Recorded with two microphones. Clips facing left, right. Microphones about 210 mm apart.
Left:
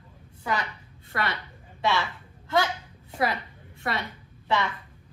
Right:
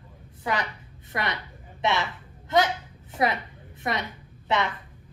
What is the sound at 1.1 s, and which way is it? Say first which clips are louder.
Speech: even; 20° right (ahead or behind).